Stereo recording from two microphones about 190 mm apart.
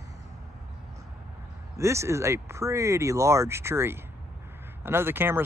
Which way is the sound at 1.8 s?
15° right (ahead or behind).